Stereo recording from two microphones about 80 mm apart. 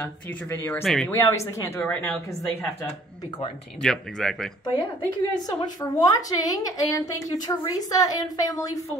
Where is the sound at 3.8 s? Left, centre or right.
Centre.